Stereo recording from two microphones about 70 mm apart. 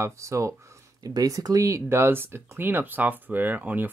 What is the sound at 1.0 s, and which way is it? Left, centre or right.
Speech, right.